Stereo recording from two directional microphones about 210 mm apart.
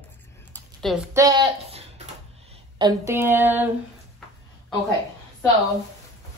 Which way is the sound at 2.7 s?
15° right (ahead or behind).